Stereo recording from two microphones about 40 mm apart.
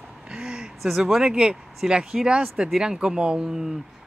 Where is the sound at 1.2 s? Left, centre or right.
Right.